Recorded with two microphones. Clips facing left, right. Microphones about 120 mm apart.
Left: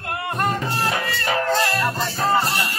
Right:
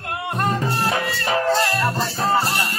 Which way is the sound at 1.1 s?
Centre (ahead or behind).